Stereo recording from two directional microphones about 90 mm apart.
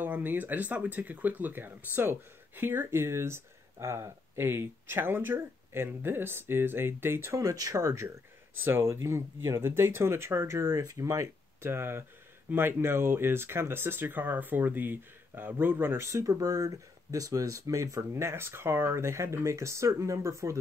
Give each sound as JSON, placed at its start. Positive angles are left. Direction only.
{"t": 0.0, "sound": "speech", "side_deg": -20}